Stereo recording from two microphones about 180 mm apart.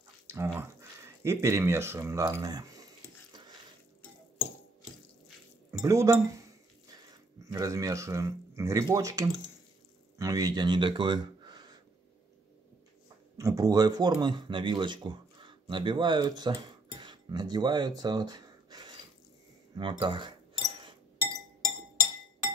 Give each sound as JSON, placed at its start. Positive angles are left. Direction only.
{"t": 0.3, "sound": "speech", "side_deg": -15}
{"t": 5.7, "sound": "speech", "side_deg": -15}
{"t": 7.5, "sound": "speech", "side_deg": -20}
{"t": 10.1, "sound": "a sound", "side_deg": -20}
{"t": 13.4, "sound": "speech", "side_deg": -20}